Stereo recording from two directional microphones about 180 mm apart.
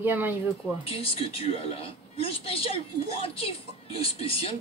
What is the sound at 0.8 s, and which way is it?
A woman's voice, 30° left (ahead or behind).